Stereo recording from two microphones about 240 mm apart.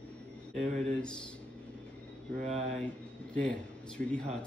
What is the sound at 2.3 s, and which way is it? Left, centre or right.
Speech, right.